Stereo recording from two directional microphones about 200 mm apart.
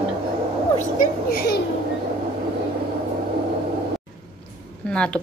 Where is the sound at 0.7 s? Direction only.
45° left (ahead or behind).